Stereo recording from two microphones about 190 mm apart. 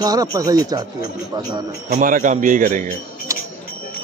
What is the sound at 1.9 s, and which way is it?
Speech, 45° right (ahead or behind).